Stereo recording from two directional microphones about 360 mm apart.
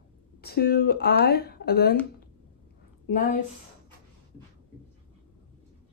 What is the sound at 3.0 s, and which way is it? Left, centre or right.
Speech, left.